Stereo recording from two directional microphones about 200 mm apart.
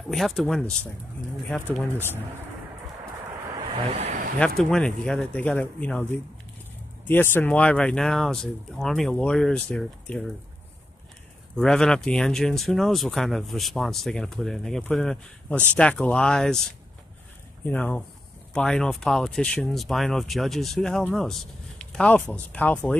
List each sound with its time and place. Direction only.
0.1 s speech: centre (ahead or behind)
1.8 s speech: 10° left (ahead or behind)
3.5 s speech: 30° right (ahead or behind)
4.4 s speech: 5° left (ahead or behind)
11.5 s speech: 5° left (ahead or behind)
17.6 s speech: 5° left (ahead or behind)